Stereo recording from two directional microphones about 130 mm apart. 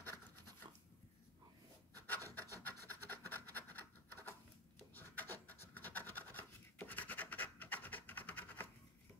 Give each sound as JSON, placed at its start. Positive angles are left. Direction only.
{"t": 2.0, "sound": "rub", "side_deg": 15}
{"t": 2.5, "sound": "scratch", "side_deg": 15}